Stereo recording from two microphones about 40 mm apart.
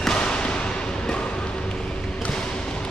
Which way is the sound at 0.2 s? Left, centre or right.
Left.